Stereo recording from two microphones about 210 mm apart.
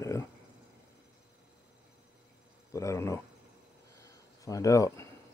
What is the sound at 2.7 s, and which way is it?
Speech, 15° left (ahead or behind).